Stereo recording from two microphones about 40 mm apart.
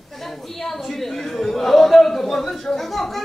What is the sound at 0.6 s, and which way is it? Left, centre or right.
A woman's voice, centre.